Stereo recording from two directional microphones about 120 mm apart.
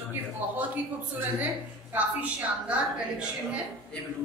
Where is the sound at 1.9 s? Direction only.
10° right (ahead or behind).